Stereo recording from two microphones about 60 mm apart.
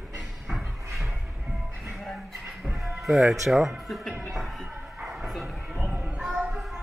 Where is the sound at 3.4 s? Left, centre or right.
Centre.